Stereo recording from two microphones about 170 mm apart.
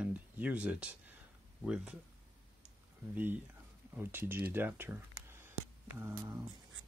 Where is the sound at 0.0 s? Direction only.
10° right (ahead or behind).